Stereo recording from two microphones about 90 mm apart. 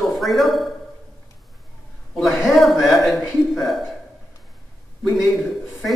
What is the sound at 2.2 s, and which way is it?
A man's voice, centre (ahead or behind).